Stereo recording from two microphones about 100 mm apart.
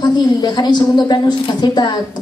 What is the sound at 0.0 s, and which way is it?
Speech, 45° left (ahead or behind).